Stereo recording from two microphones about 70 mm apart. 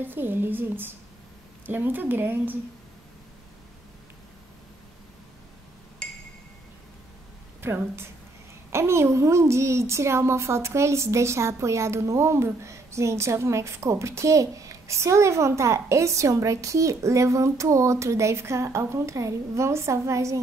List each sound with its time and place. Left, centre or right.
0.0 s a woman's voice: right
7.6 s a woman's voice: right